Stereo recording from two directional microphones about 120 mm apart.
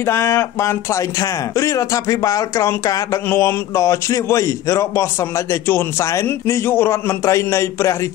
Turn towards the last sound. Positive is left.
turn(degrees=25)  # may be behind; listen again after turning